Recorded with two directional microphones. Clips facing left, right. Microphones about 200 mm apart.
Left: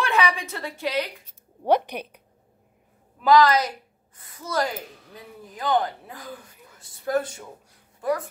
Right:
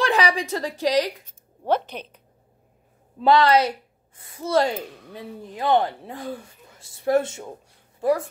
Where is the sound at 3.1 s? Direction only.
30° right (ahead or behind).